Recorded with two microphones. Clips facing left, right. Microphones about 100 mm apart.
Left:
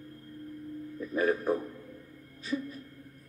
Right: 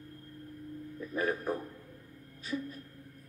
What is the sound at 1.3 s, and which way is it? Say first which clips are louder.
Speech: left 6 dB; 15° left (ahead or behind).